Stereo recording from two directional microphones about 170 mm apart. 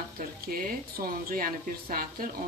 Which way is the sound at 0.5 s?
60° right (ahead or behind).